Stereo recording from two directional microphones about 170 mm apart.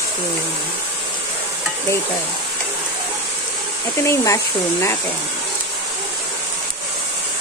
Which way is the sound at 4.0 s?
15° left (ahead or behind).